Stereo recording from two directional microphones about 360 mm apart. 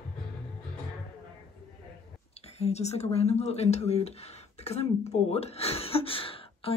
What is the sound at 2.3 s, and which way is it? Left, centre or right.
Speech, centre.